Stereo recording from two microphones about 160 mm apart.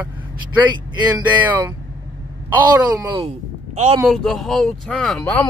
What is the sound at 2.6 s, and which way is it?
Speech, 30° right (ahead or behind).